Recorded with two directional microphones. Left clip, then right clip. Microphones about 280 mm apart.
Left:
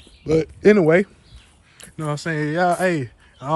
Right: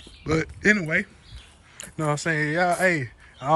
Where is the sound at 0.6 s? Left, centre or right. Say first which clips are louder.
Left 8 dB; centre.